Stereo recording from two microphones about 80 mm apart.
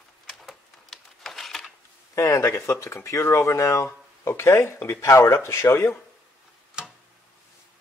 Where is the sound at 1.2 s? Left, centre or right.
Centre.